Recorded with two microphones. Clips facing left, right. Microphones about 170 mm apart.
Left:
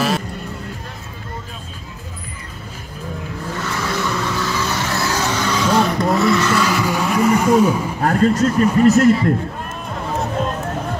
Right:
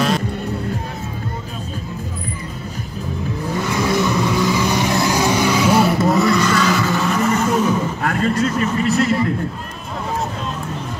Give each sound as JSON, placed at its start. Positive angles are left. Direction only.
{"t": 3.5, "sound": "vehicle", "side_deg": -15}
{"t": 8.0, "sound": "speech", "side_deg": 35}